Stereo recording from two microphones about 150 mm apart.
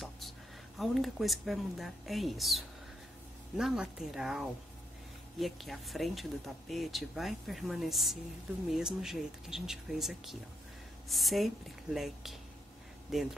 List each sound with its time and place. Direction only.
0.7 s speech: centre (ahead or behind)